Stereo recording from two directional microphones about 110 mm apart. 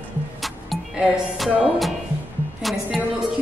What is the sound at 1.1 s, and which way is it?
A woman's voice, 5° right (ahead or behind).